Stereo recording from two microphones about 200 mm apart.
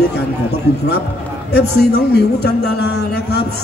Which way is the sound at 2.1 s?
55° left (ahead or behind).